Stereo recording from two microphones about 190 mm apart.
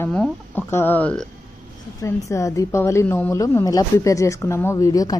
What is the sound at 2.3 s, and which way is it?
A woman's voice, 15° left (ahead or behind).